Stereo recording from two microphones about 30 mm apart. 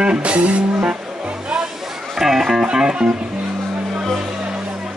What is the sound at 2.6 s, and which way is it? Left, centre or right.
Music, right.